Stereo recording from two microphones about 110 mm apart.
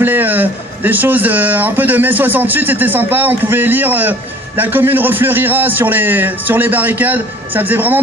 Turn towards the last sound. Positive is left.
turn(degrees=-15)  # may be behind; listen again after turning